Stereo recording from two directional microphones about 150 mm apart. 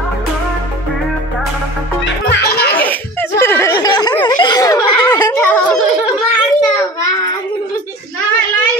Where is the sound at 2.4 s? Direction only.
90° left.